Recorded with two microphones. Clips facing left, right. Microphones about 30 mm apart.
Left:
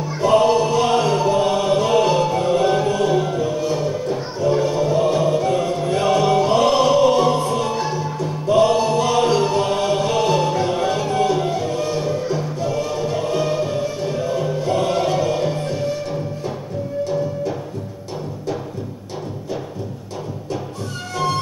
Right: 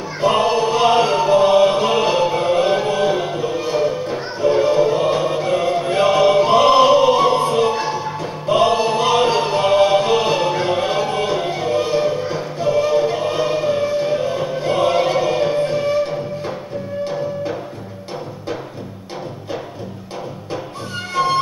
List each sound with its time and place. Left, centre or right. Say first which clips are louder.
0.2 s chant: left 1 dB; right
21.1 s music: right 4 dB; right